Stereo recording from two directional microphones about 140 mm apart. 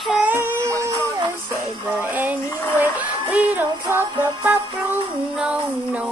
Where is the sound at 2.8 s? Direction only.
10° right (ahead or behind).